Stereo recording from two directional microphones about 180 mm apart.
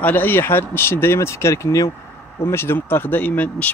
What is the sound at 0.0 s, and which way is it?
Speech, 10° left (ahead or behind).